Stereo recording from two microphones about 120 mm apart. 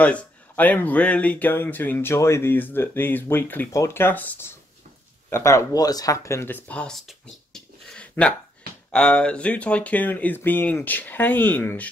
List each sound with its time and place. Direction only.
0.0 s speech: 10° left (ahead or behind)